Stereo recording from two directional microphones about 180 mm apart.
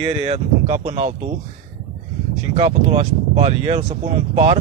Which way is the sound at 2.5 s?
35° right (ahead or behind).